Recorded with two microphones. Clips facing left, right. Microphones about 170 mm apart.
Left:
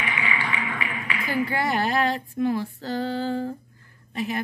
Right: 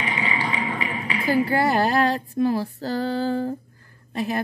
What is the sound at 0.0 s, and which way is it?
Speech, 35° right (ahead or behind).